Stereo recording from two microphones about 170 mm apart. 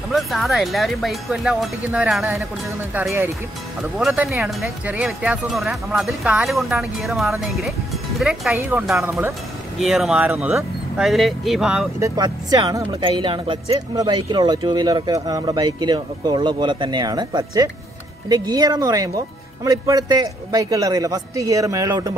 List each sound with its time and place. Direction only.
0.1 s speech: centre (ahead or behind)
8.5 s speech: 15° right (ahead or behind)
12.0 s speech: 20° right (ahead or behind)